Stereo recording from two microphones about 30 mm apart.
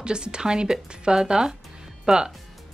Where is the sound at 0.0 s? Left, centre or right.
Right.